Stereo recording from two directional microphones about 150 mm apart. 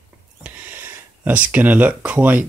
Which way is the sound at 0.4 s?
10° right (ahead or behind).